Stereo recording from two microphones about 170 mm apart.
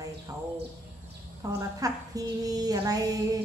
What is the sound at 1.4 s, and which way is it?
A woman's voice, 20° right (ahead or behind).